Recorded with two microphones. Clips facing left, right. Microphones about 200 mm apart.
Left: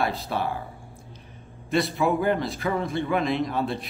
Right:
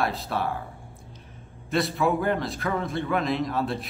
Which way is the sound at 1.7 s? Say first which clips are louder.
Left 1 dB; centre (ahead or behind).